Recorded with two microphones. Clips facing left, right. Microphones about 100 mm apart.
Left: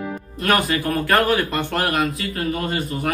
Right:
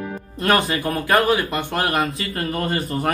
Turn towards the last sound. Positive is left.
turn(degrees=-35)  # may be behind; listen again after turning